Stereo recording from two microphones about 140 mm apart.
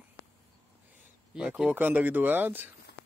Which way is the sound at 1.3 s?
5° right (ahead or behind).